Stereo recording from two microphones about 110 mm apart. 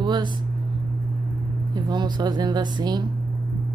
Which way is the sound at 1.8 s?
40° right (ahead or behind).